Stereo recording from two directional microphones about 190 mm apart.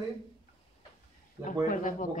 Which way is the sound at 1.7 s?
45° left (ahead or behind).